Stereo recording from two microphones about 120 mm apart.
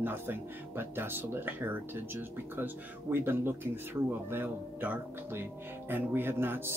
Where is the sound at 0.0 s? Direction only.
20° right (ahead or behind).